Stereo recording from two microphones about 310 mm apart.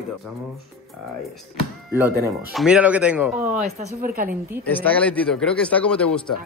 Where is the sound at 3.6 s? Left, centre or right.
Right.